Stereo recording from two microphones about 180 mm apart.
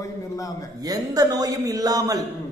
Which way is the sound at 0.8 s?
20° right (ahead or behind).